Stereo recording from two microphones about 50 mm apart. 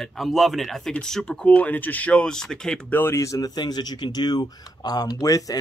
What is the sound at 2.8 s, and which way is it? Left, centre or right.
Speech, left.